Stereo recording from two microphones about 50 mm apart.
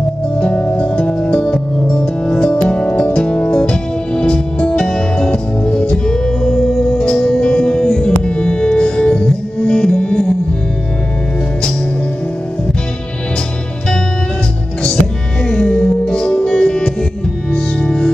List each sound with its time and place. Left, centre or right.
0.4 s music: left
5.3 s music: left
15.4 s music: centre